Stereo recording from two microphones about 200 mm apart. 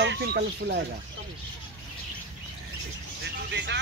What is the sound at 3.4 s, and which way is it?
Vehicle, 60° right (ahead or behind).